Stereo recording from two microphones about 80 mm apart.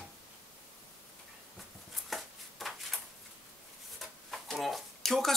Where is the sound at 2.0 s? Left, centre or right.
Centre.